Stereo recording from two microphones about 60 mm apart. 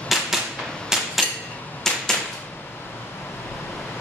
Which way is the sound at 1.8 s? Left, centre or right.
Centre.